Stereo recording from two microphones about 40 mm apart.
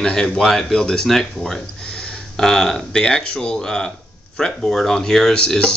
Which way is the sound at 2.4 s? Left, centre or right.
Centre.